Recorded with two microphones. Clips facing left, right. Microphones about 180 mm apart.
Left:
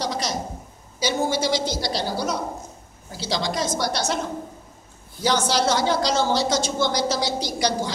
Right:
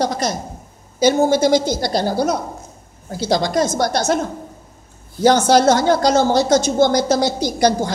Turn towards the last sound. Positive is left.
turn(degrees=-50)  # may be behind; listen again after turning